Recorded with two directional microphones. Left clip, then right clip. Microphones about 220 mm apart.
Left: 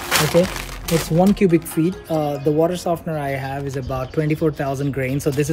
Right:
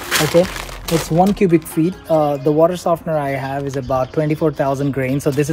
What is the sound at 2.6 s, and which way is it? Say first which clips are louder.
Speech: right 5 dB; 20° right (ahead or behind).